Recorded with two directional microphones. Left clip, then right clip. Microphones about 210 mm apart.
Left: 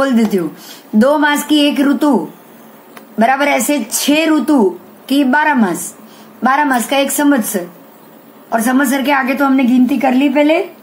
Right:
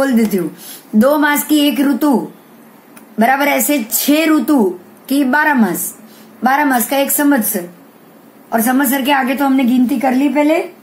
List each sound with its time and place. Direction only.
0.0 s speech: 5° left (ahead or behind)
3.2 s speech: centre (ahead or behind)
8.5 s a woman's voice: 10° left (ahead or behind)